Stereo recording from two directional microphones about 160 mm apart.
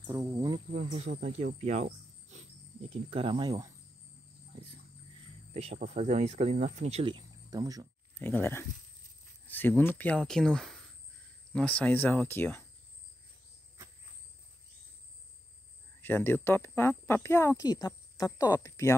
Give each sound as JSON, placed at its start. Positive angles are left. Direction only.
{"t": 0.0, "sound": "speech", "side_deg": -20}
{"t": 0.7, "sound": "speech", "side_deg": -40}
{"t": 5.5, "sound": "speech", "side_deg": -40}
{"t": 8.1, "sound": "speech", "side_deg": 10}
{"t": 16.0, "sound": "speech", "side_deg": 15}